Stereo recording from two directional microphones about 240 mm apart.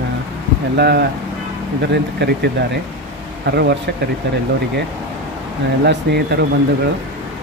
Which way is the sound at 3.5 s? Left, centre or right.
Right.